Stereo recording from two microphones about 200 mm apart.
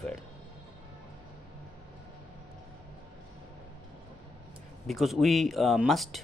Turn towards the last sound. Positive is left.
turn(degrees=0)  # may be behind; listen again after turning